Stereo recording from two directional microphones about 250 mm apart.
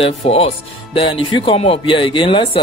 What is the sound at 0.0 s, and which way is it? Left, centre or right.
Speech, left.